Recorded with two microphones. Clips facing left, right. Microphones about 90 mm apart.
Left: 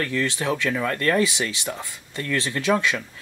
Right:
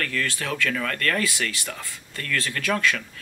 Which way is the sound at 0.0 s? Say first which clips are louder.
Left 3 dB; 20° left (ahead or behind).